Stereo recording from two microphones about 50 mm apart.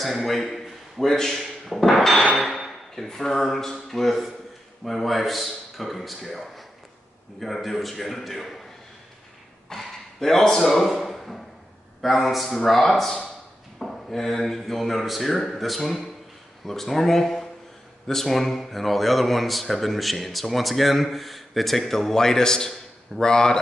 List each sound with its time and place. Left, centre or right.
0.0 s a man's voice: centre
2.3 s hammer: centre
3.1 s speech: centre
9.7 s a sound: centre
12.0 s speech: centre